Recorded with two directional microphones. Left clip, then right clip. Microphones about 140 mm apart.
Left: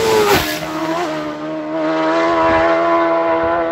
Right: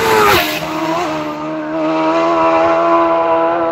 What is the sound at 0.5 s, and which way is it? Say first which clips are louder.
Vehicle: right 3 dB; 5° right (ahead or behind).